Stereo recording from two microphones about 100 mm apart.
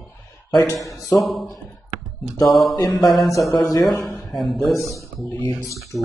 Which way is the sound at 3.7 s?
30° left (ahead or behind).